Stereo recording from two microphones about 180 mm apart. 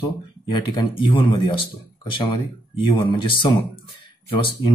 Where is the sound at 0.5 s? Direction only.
25° left (ahead or behind).